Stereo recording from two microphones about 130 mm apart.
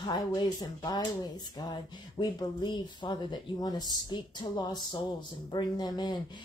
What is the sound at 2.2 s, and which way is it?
Speech, 35° left (ahead or behind).